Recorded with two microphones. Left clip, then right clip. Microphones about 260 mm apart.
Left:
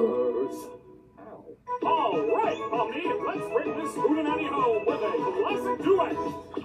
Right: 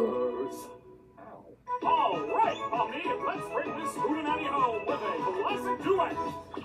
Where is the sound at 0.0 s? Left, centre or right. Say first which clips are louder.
Left 4 dB; centre.